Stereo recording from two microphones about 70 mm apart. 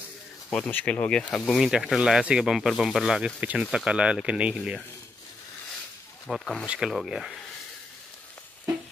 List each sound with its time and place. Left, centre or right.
0.5 s speech: left
1.5 s speech: centre
4.6 s speech: centre
6.2 s speech: centre
6.6 s speech: centre